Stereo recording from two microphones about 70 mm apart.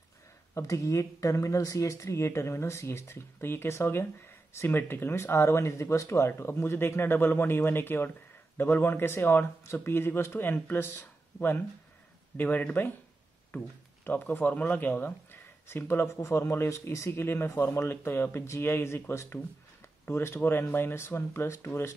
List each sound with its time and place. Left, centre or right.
0.6 s speech: left